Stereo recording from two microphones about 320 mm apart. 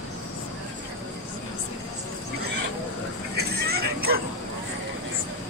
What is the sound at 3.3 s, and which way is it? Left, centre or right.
Vehicle, right.